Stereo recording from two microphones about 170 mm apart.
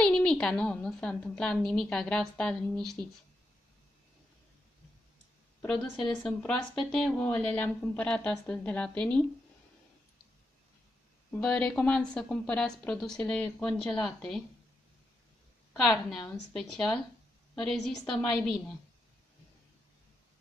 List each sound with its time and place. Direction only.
0.0 s a woman's voice: 5° left (ahead or behind)
5.6 s speech: 5° left (ahead or behind)
11.2 s a woman's voice: 5° left (ahead or behind)
15.7 s a woman's voice: centre (ahead or behind)